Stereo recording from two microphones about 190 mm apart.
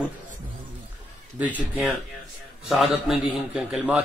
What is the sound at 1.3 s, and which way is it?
A man's voice, 10° right (ahead or behind).